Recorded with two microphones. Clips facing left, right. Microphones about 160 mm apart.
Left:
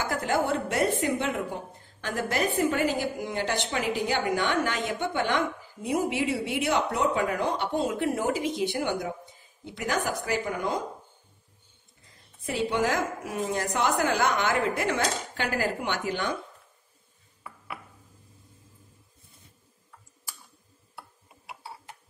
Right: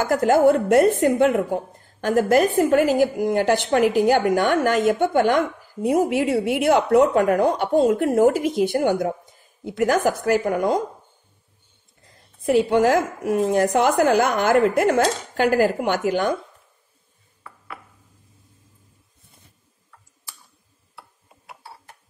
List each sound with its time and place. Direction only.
0.1 s a woman's voice: 50° right (ahead or behind)
12.4 s a woman's voice: 55° right (ahead or behind)